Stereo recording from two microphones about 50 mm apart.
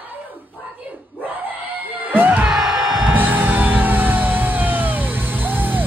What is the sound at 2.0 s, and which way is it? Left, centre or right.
Music, right.